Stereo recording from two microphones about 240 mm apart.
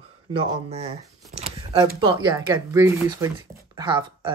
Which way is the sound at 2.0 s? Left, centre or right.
Centre.